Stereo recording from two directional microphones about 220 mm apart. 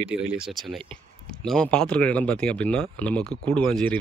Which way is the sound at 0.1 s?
5° right (ahead or behind).